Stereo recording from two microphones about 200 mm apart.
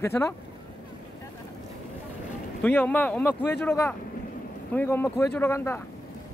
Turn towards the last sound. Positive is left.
turn(degrees=10)  # may be behind; listen again after turning